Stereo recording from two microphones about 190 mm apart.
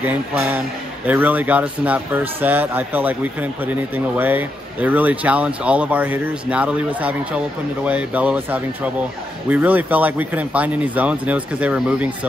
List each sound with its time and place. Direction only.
0.0 s speech: 10° right (ahead or behind)
4.2 s speech: 10° right (ahead or behind)